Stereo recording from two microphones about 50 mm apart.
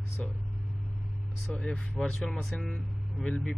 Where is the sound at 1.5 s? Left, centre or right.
Left.